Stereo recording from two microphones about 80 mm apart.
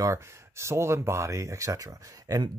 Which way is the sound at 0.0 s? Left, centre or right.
Right.